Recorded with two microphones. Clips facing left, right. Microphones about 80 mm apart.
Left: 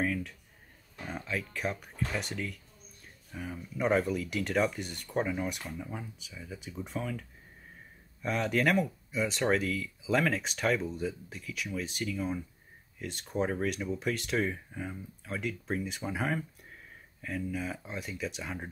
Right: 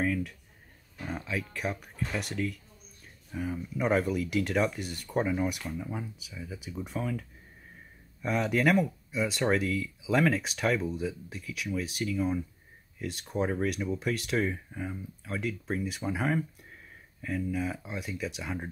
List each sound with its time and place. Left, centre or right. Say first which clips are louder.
0.0 s speech: right 2 dB; centre